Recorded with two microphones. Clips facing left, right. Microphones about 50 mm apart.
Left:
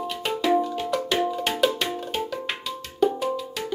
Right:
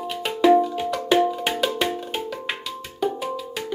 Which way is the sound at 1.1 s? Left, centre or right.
Centre.